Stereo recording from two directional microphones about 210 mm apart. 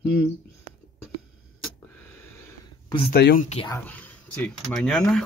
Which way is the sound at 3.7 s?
10° left (ahead or behind).